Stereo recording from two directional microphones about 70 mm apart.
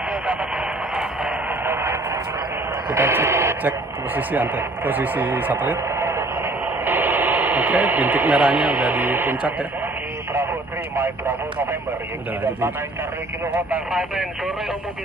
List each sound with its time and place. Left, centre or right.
1.7 s radio: right
3.6 s speech: right
5.9 s radio: right
6.8 s speech: right